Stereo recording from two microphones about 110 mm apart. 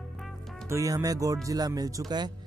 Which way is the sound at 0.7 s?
30° right (ahead or behind).